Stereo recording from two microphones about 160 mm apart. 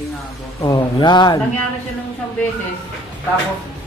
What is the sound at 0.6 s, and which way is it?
Speech, 25° left (ahead or behind).